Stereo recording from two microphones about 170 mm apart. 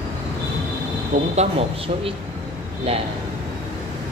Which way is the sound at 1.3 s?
40° right (ahead or behind).